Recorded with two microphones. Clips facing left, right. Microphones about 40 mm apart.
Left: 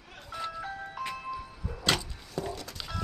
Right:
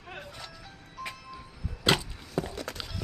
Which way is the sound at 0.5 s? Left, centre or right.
Left.